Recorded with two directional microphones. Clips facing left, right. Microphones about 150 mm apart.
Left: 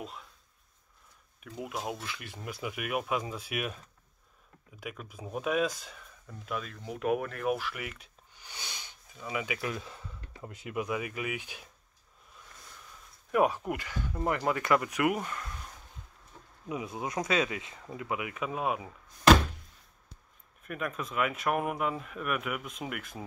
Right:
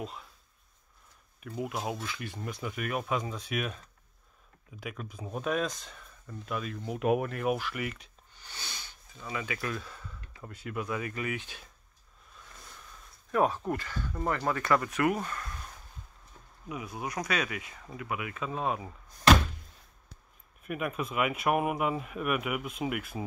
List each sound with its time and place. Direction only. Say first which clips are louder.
0.0 s a sound: right 3 dB; centre (ahead or behind)
1.4 s speech: right 3 dB; centre (ahead or behind); by 7.4 s 20° right (ahead or behind)
7.4 s speech: right 1 dB; centre (ahead or behind)
8.4 s speech: even; 15° left (ahead or behind)
13.3 s speech: even; 10° left (ahead or behind)
16.6 s speech: left 2 dB; 25° left (ahead or behind); by 18.9 s 10° left (ahead or behind)
20.6 s speech: right 3 dB; 10° right (ahead or behind)